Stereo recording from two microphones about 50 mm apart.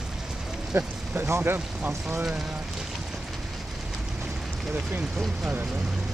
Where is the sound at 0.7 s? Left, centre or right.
Right.